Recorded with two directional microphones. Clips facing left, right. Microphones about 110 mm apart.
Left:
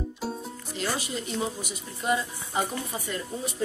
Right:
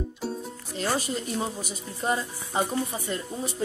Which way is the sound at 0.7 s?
40° right (ahead or behind).